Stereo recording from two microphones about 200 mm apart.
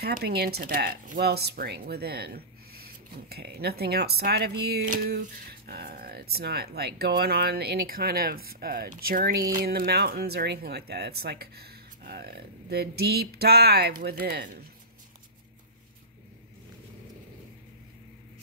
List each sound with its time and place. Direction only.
0.0 s speech: 50° right (ahead or behind)